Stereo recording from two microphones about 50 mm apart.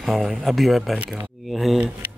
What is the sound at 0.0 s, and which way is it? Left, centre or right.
Speech, centre.